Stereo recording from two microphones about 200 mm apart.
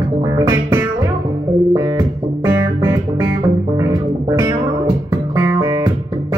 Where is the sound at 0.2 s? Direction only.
15° right (ahead or behind).